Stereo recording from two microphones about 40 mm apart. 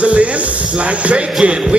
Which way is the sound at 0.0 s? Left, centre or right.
Right.